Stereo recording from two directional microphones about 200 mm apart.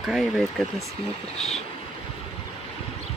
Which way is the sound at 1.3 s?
30° left (ahead or behind).